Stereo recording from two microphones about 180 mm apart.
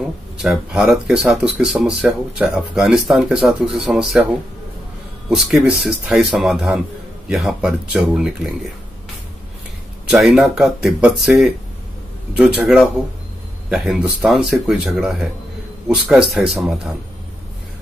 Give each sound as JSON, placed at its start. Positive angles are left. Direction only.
{"t": 0.4, "sound": "speech", "side_deg": 0}
{"t": 5.3, "sound": "speech", "side_deg": 0}
{"t": 10.0, "sound": "speech", "side_deg": 0}